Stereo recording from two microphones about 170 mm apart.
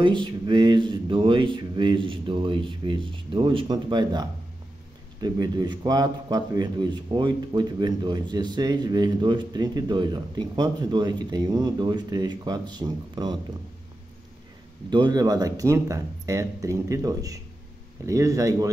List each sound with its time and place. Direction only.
0.0 s a man's voice: 30° right (ahead or behind)
14.9 s a man's voice: 25° right (ahead or behind)